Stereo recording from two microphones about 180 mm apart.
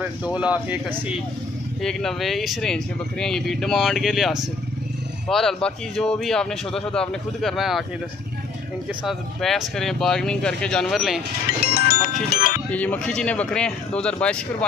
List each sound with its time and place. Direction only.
0.0 s speech: 5° right (ahead or behind)
1.8 s speech: 5° left (ahead or behind)
9.0 s speech: centre (ahead or behind)
11.7 s music: 55° left (ahead or behind)
12.7 s speech: 10° left (ahead or behind)